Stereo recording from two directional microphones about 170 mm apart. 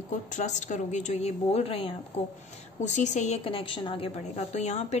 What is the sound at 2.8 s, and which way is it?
A woman's voice, 45° left (ahead or behind).